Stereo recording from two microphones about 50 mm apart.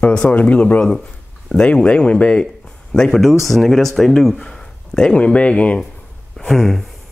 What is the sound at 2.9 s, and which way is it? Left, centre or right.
Speech, centre.